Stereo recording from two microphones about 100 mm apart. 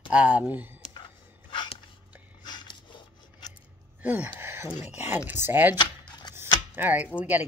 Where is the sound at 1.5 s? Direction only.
55° left (ahead or behind).